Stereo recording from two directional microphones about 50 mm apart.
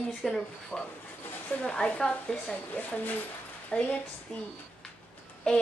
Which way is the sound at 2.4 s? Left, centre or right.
Left.